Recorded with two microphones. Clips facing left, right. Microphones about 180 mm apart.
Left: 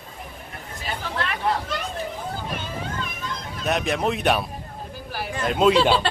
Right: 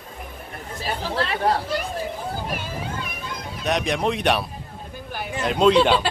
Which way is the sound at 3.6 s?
Centre (ahead or behind).